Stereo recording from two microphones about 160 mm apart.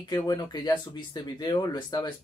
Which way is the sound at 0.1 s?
25° left (ahead or behind).